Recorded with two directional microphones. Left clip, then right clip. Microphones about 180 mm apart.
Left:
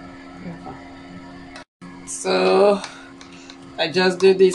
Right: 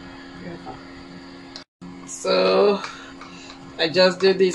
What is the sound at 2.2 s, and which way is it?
Music, 50° left (ahead or behind).